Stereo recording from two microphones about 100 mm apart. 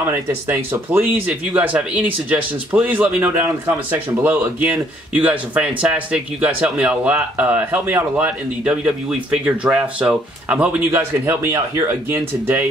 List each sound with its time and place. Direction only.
0.0 s speech: 25° right (ahead or behind)